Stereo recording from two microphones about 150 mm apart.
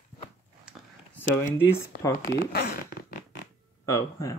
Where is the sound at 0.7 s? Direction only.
5° right (ahead or behind).